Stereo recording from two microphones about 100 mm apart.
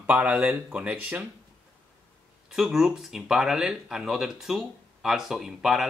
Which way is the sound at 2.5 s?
5° right (ahead or behind).